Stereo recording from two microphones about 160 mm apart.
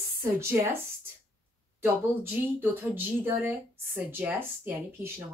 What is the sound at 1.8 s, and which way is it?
A woman's voice, 15° right (ahead or behind).